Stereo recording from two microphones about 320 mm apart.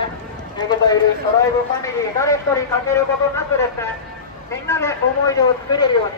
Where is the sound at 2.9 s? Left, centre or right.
Centre.